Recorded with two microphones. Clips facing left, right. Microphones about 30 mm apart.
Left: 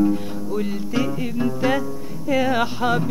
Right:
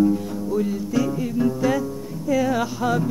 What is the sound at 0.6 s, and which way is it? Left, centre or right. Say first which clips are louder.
Music: left 1 dB; left.